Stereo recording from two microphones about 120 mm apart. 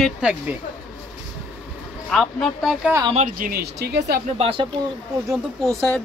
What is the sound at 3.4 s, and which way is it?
Speech, 90° right.